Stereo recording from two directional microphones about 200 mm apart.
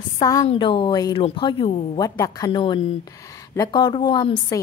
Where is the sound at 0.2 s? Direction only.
20° left (ahead or behind).